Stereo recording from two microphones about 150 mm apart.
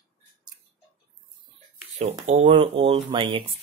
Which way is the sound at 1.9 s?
45° right (ahead or behind).